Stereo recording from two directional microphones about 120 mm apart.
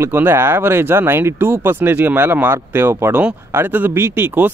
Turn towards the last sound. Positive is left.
turn(degrees=-15)  # may be behind; listen again after turning